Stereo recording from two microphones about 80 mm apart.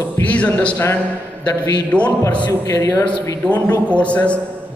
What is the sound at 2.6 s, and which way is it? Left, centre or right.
Speech, left.